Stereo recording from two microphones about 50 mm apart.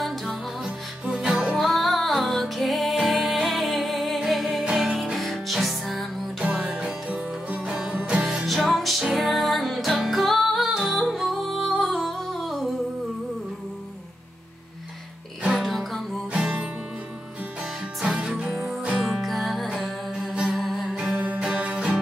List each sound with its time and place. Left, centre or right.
0.0 s music: centre
0.7 s music: right
1.2 s music: centre
6.6 s music: right
8.5 s music: centre
15.5 s music: centre
16.3 s music: right
18.0 s music: centre
20.9 s music: centre